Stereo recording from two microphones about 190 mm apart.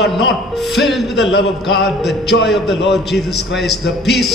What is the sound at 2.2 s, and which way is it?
Speech, 65° left (ahead or behind).